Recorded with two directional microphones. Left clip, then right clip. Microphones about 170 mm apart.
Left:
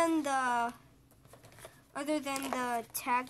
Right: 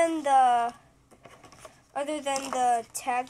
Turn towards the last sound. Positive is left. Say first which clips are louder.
# right 3 dB
turn(degrees=75)  # may be behind; listen again after turning